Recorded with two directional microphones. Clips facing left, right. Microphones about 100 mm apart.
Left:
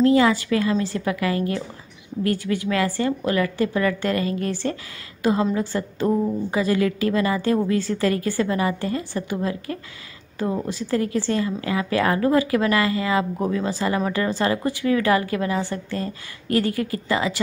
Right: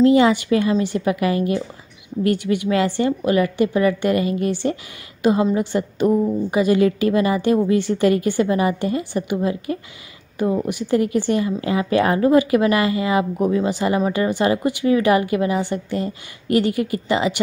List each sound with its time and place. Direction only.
0.0 s a woman's voice: 20° right (ahead or behind)